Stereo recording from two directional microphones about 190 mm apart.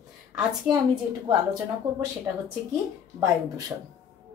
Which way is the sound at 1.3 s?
20° right (ahead or behind).